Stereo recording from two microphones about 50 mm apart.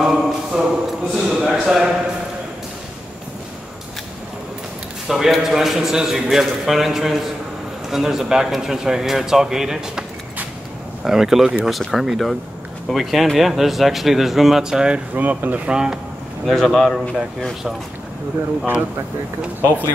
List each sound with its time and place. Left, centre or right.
0.0 s a sound: centre
1.4 s a man's voice: centre
5.0 s a man's voice: centre
11.1 s a man's voice: centre
15.1 s speech: right
15.7 s a man's voice: centre
16.4 s speech: centre